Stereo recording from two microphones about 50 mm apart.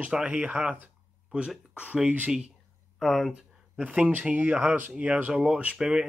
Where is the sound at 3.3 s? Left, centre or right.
Right.